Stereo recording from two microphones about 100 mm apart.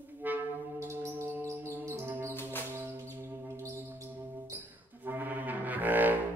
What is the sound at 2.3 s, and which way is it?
Music, 20° left (ahead or behind).